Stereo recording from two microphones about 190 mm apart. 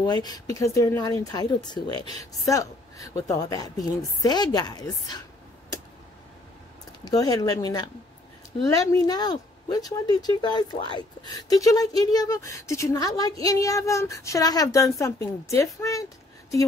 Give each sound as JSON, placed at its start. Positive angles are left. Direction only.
{"t": 0.0, "sound": "speech", "side_deg": 20}
{"t": 7.1, "sound": "speech", "side_deg": 20}